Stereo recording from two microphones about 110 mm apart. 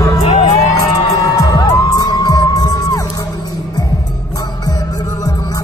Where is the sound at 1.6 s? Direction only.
35° left (ahead or behind).